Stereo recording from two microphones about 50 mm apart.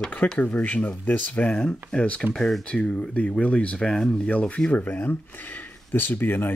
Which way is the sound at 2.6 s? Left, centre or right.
Centre.